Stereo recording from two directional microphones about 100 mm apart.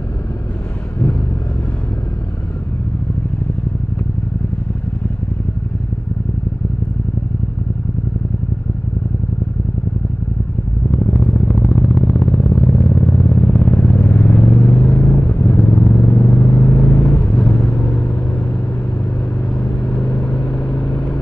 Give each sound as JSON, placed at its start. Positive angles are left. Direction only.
{"t": 10.9, "sound": "vehicle", "side_deg": 20}
{"t": 19.5, "sound": "vehicle", "side_deg": 10}